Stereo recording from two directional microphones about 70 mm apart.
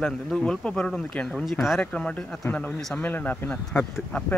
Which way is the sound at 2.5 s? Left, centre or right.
Left.